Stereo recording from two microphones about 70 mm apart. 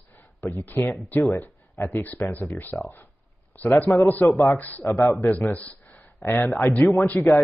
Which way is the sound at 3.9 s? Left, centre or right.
Left.